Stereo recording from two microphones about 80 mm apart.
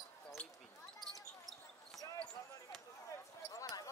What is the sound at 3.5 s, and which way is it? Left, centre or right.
Basketball bounce, left.